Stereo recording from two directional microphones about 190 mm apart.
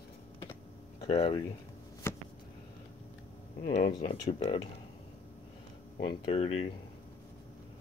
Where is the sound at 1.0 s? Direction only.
30° left (ahead or behind).